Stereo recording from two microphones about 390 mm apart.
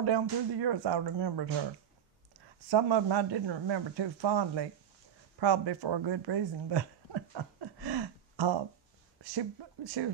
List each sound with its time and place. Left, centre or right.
0.0 s speech: right
2.7 s speech: right